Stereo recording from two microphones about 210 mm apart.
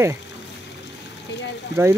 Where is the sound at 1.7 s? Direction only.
55° left (ahead or behind).